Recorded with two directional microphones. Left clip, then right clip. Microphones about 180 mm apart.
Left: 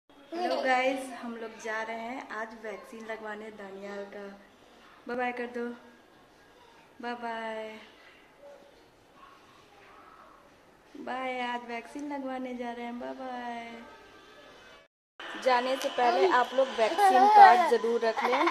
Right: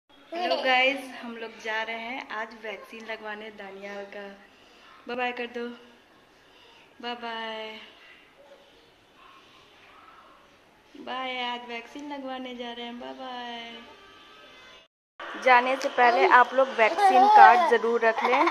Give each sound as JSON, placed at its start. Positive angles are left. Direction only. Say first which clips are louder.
{"t": 0.4, "sound": "a woman's voice", "louder": "right 4 dB", "side_deg": 10}
{"t": 7.0, "sound": "a woman's voice", "louder": "right 2 dB", "side_deg": 10}
{"t": 11.1, "sound": "a woman's voice", "louder": "right 2 dB", "side_deg": 15}
{"t": 15.5, "sound": "speech", "louder": "right 7 dB", "side_deg": -10}
{"t": 17.8, "sound": "speech", "louder": "right 5 dB", "side_deg": -10}
{"t": 18.1, "sound": "speech", "louder": "right 4 dB", "side_deg": -20}